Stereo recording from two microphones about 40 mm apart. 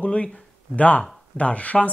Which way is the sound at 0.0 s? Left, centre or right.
Left.